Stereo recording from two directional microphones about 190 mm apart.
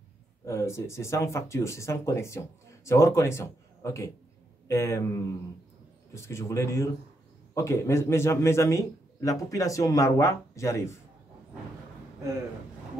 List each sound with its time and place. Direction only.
0.5 s speech: 15° left (ahead or behind)